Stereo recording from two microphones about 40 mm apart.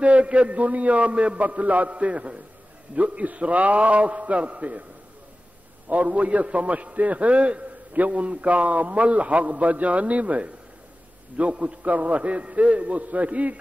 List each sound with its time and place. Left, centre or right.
0.0 s a man's voice: right
5.9 s a man's voice: right